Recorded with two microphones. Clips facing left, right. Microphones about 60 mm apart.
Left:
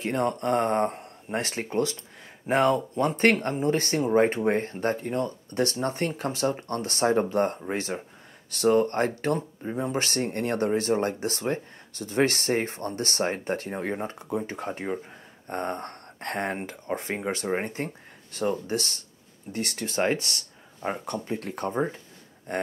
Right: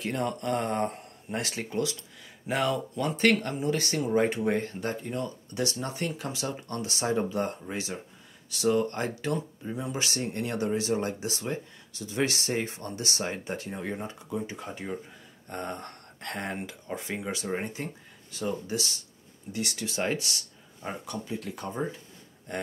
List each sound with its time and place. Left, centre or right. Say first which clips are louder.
0.0 s speech: left 4 dB; left
8.6 s speech: left 4 dB; left